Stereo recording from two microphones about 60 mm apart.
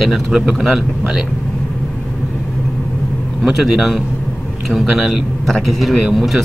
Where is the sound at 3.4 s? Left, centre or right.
Centre.